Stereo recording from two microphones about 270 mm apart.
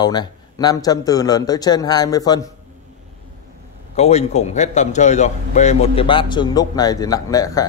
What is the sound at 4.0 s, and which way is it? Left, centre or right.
A man's voice, left.